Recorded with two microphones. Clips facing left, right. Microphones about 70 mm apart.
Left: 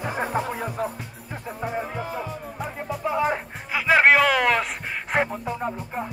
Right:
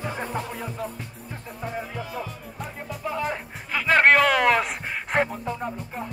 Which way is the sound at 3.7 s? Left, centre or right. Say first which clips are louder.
Left 1 dB; centre.